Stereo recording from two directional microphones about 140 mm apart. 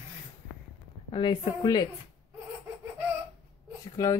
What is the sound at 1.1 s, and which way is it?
Speech, 35° left (ahead or behind).